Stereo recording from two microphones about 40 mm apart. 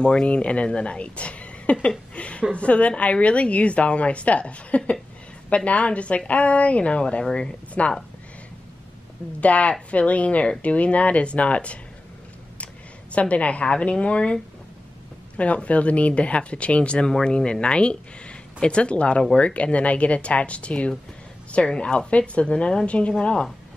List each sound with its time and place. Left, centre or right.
0.0 s a woman's voice: left
9.4 s a woman's voice: left
13.1 s a woman's voice: left
17.1 s a woman's voice: centre